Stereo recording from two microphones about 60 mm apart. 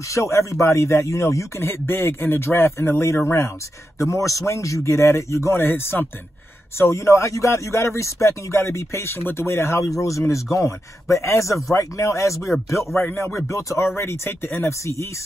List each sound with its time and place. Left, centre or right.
0.1 s speech: left
1.7 s speech: left
6.8 s speech: left
12.4 s speech: centre
12.6 s speech: left
13.0 s speech: left
13.5 s speech: left
13.9 s speech: left
14.7 s speech: left